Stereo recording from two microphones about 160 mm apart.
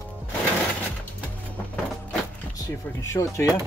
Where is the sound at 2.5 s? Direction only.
20° left (ahead or behind).